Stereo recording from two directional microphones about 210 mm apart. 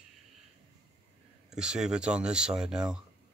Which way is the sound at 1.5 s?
5° right (ahead or behind).